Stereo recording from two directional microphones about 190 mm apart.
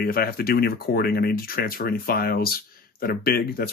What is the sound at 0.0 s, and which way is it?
Speech, 55° left (ahead or behind).